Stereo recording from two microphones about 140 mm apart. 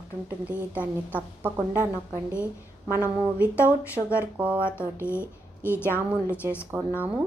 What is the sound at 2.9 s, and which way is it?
A woman's voice, 10° right (ahead or behind).